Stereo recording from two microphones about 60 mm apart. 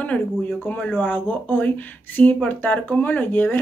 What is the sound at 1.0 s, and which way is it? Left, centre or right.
Speech, left.